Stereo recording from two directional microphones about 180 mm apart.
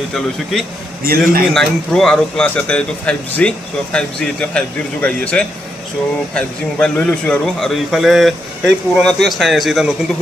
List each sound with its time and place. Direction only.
0.1 s speech: centre (ahead or behind)
1.0 s a man's voice: 55° right (ahead or behind)
1.5 s speech: centre (ahead or behind)